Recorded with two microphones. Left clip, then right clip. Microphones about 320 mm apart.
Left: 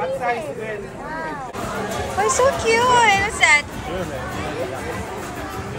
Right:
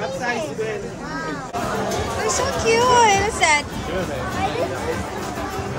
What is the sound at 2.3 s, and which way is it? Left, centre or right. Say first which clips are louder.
A woman's voice: left 3 dB; centre.